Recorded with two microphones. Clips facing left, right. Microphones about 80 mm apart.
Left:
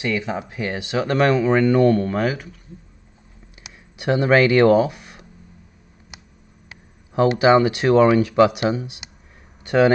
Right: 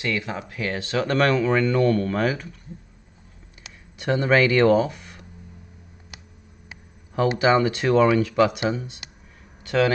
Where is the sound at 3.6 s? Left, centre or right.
Centre.